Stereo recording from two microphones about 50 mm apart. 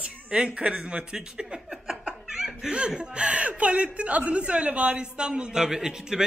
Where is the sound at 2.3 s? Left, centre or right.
Centre.